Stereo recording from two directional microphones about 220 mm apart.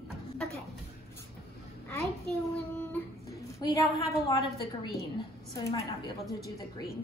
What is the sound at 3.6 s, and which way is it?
A woman's voice, 15° left (ahead or behind).